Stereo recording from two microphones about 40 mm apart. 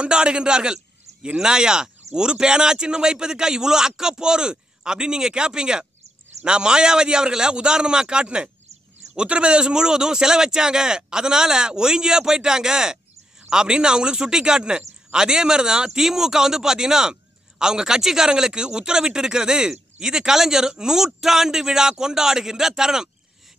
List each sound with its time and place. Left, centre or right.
0.0 s a man's voice: right
15.1 s a man's voice: centre